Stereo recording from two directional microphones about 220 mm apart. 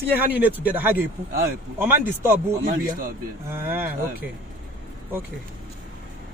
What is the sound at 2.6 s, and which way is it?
Speech, 40° right (ahead or behind).